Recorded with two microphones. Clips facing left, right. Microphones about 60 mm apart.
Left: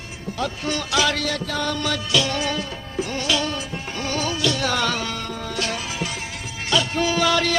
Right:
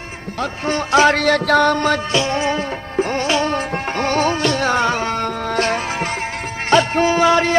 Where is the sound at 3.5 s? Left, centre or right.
Right.